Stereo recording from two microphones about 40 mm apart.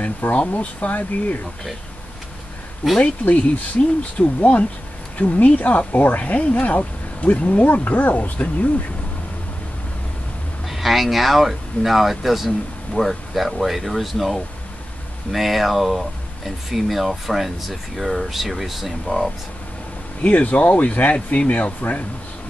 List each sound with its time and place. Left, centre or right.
0.2 s speech: left
3.0 s speech: left
10.7 s speech: centre
20.2 s speech: left